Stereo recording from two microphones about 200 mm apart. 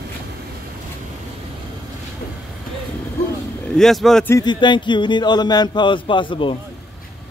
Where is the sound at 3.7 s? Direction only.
Centre (ahead or behind).